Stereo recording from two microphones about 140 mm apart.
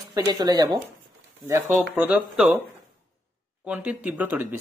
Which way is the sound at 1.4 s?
15° right (ahead or behind).